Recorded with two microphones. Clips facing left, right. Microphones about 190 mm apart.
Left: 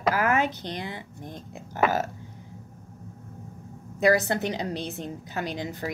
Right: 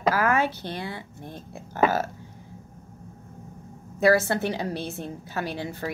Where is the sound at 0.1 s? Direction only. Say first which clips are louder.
Right 1 dB; 15° left (ahead or behind).